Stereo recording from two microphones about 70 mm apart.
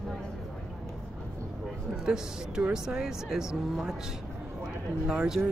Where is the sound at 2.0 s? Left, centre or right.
Centre.